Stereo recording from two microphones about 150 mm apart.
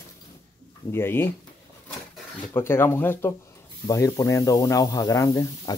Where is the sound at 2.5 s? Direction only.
15° left (ahead or behind).